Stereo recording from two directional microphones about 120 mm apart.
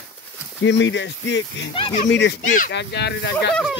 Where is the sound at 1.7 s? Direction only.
45° left (ahead or behind).